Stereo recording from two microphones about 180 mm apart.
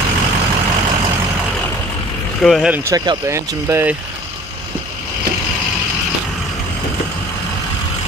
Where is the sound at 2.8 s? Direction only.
20° right (ahead or behind).